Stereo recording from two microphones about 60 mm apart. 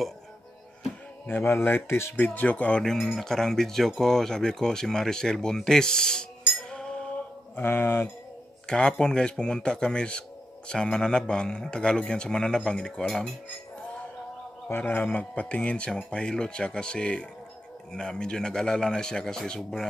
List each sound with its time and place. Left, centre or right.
1.2 s speech: left
2.1 s speech: left
2.8 s speech: centre
6.5 s music: centre
7.6 s speech: left
8.6 s speech: centre
14.7 s speech: left; by 19.6 s centre